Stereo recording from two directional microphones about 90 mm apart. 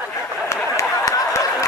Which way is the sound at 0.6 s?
35° left (ahead or behind).